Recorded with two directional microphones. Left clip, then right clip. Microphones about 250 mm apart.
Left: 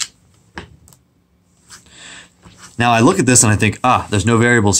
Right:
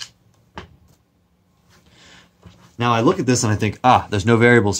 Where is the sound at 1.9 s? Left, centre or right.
Centre.